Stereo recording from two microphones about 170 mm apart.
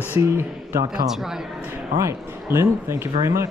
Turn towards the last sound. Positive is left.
turn(degrees=-15)  # may be behind; listen again after turning